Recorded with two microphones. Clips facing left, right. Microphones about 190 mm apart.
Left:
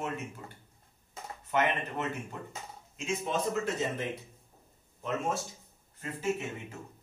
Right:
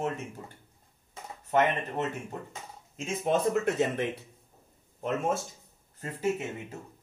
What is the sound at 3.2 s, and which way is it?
Speech, 65° right (ahead or behind).